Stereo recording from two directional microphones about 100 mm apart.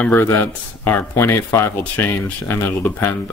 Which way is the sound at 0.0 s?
20° left (ahead or behind).